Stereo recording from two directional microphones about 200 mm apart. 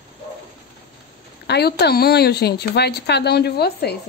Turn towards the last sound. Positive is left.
turn(degrees=50)  # may be behind; listen again after turning